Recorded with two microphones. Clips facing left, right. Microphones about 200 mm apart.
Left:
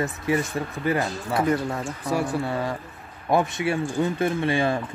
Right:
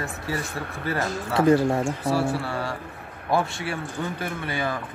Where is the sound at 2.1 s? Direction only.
20° left (ahead or behind).